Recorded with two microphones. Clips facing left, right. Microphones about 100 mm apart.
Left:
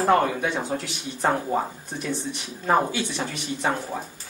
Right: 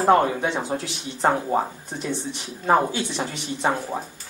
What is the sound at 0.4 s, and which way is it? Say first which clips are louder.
A man's voice: right 1 dB; 30° right (ahead or behind).